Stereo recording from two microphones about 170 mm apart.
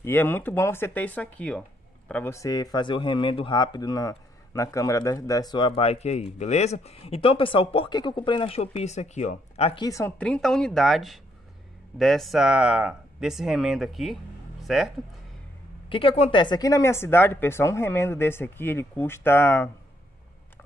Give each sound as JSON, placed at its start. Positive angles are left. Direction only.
{"t": 0.0, "sound": "speech", "side_deg": 10}
{"t": 9.8, "sound": "speech", "side_deg": 20}
{"t": 10.1, "sound": "speech", "side_deg": 5}
{"t": 14.6, "sound": "a sound", "side_deg": 0}
{"t": 15.9, "sound": "speech", "side_deg": 30}